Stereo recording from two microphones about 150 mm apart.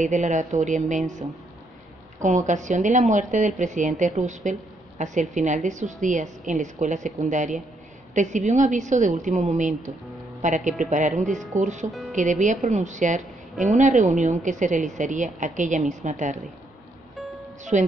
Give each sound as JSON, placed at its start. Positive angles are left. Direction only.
{"t": 0.0, "sound": "speech", "side_deg": -55}
{"t": 2.2, "sound": "speech", "side_deg": -55}
{"t": 17.7, "sound": "speech", "side_deg": -50}